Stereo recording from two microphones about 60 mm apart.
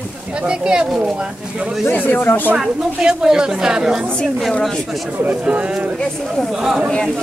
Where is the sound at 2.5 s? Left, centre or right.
Centre.